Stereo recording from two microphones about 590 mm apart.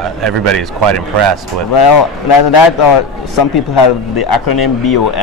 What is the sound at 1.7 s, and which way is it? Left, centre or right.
Speech, left.